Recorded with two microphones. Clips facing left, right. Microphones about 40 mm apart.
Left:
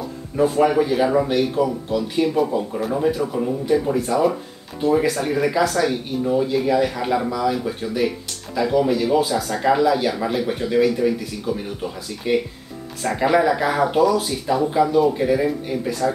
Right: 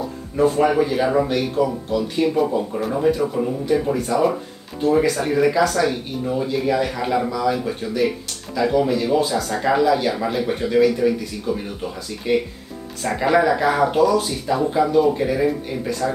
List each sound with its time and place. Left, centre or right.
0.4 s speech: centre